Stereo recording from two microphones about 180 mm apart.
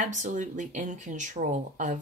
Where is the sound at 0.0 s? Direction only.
45° right (ahead or behind).